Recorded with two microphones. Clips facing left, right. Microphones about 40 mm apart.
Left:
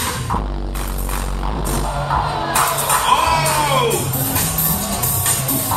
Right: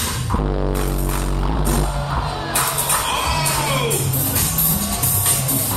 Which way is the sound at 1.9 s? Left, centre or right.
Centre.